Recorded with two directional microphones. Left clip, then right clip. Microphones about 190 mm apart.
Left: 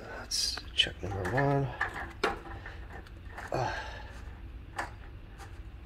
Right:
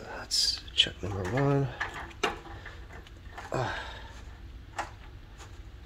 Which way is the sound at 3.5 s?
40° right (ahead or behind).